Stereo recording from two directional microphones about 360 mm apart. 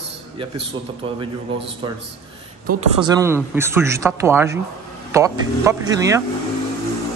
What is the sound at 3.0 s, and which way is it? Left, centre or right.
A man's voice, centre.